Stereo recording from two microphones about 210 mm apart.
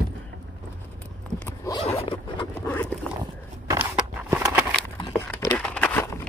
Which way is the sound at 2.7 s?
10° left (ahead or behind).